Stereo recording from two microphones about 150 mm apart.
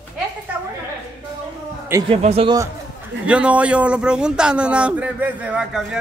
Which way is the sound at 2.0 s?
40° right (ahead or behind).